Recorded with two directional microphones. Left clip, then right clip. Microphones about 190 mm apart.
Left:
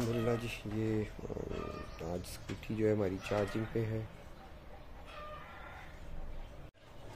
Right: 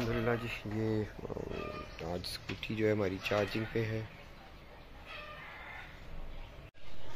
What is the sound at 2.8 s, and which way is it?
Speech, centre (ahead or behind).